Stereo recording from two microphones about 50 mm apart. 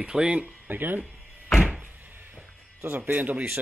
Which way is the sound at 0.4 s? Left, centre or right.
Right.